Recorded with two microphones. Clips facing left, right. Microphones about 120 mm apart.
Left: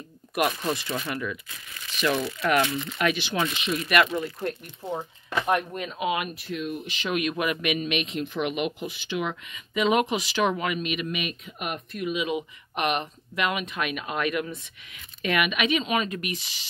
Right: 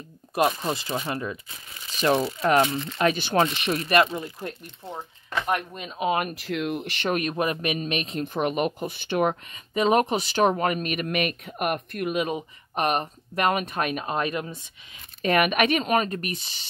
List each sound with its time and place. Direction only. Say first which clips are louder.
0.3 s speech: right 2 dB; 30° right (ahead or behind); by 3.8 s 50° right (ahead or behind)
3.8 s speech: right 1 dB; 30° right (ahead or behind)
4.8 s speech: left 5 dB; 10° left (ahead or behind)
5.9 s speech: right 3 dB; 40° right (ahead or behind)
6.4 s speech: right 3 dB; 80° right
7.1 s speech: right 1 dB; 40° right (ahead or behind)
15.2 s speech: right 4 dB; 45° right (ahead or behind)